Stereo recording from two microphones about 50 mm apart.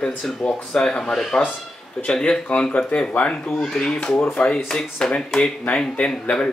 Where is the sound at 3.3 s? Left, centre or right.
Centre.